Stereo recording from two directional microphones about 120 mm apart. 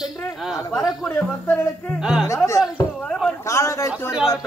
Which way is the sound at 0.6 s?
25° left (ahead or behind).